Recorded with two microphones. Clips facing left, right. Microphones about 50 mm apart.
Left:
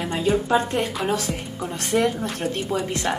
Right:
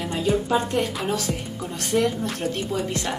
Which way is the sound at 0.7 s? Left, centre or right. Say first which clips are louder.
Left 1 dB; left.